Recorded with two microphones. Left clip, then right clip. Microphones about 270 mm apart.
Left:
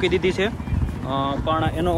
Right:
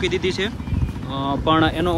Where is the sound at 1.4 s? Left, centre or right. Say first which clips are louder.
Right 8 dB; right.